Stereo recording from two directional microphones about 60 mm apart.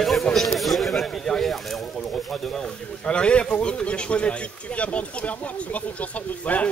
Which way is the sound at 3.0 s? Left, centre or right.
Centre.